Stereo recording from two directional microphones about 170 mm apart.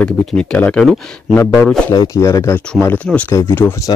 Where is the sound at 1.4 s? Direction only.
20° left (ahead or behind).